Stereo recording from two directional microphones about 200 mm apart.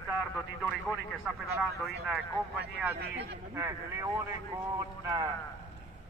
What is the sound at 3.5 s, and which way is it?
Speech, 15° right (ahead or behind).